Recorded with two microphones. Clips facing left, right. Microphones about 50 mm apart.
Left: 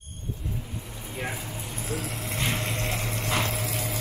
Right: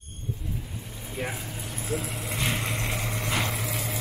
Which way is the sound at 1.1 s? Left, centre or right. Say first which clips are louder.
Even; centre.